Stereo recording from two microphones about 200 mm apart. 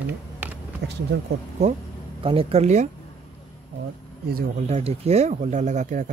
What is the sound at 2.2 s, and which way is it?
Speech, 30° right (ahead or behind).